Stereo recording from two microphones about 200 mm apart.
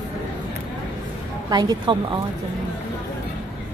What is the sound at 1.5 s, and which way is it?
Speech, 20° right (ahead or behind).